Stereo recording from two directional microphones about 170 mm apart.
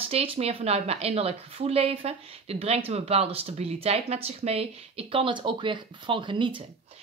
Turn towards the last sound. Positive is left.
turn(degrees=-30)  # may be behind; listen again after turning